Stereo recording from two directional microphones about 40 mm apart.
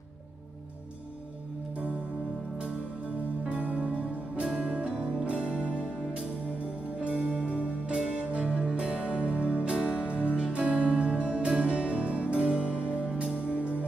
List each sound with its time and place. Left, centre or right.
3.4 s music: right
7.8 s music: right